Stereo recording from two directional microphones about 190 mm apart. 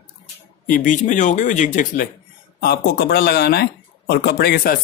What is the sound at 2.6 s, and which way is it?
Speech, 55° left (ahead or behind).